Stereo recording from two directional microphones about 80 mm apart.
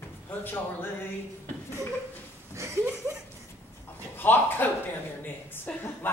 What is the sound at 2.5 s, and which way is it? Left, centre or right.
Speech, right.